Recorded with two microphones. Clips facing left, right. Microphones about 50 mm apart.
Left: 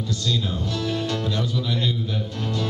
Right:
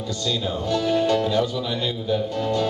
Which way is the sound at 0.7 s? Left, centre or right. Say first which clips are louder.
Right 9 dB; right.